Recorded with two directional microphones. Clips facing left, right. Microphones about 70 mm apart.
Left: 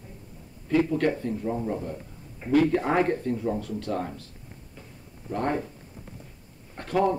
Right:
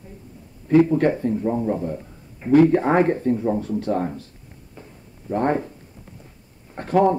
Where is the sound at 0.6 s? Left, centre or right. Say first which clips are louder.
Right 7 dB; right.